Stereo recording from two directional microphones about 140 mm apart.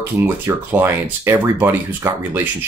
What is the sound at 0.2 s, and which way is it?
Speech, 15° right (ahead or behind).